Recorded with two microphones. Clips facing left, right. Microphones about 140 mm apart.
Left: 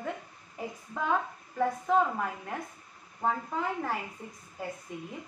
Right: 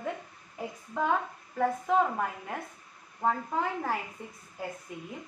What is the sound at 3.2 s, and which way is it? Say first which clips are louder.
Speech: right 1 dB; 10° left (ahead or behind).